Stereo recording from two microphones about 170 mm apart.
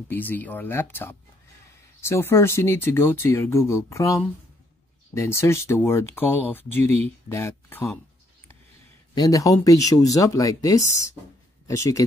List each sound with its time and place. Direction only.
0.1 s speech: 10° left (ahead or behind)
9.1 s speech: 20° left (ahead or behind)